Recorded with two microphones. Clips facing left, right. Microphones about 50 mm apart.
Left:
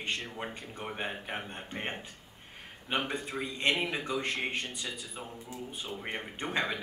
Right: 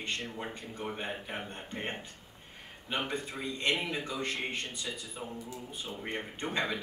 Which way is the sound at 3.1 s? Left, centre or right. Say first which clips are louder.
Left 1 dB; left.